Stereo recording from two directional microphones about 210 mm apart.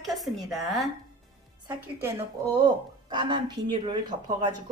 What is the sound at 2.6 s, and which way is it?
A woman's voice, 20° right (ahead or behind).